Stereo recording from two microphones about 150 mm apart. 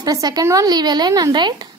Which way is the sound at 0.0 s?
25° right (ahead or behind).